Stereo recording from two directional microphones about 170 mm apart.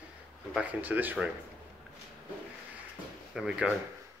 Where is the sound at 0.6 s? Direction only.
10° right (ahead or behind).